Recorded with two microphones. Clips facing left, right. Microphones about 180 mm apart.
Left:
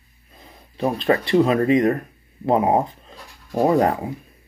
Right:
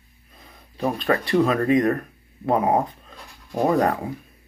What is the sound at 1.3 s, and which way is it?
Speech, 25° left (ahead or behind).